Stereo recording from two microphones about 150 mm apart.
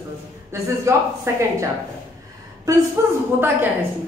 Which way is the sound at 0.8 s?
20° right (ahead or behind).